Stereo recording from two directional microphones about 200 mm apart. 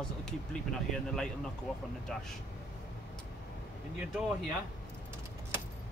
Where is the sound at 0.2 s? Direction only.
5° left (ahead or behind).